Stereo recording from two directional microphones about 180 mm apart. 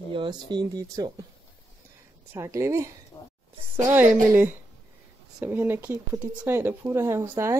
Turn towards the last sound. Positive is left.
turn(degrees=-15)  # may be behind; listen again after turning